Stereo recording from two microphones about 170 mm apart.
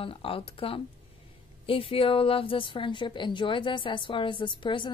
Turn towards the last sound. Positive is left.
turn(degrees=30)  # may be behind; listen again after turning